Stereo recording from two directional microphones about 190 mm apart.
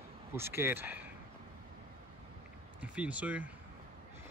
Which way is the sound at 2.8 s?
5° right (ahead or behind).